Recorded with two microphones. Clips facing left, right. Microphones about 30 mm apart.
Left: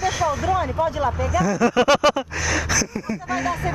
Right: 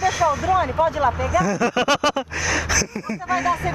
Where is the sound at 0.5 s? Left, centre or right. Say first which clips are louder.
Right 3 dB; centre.